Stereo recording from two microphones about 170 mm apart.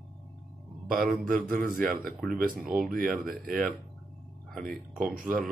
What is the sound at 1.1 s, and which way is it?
Speech, 55° right (ahead or behind).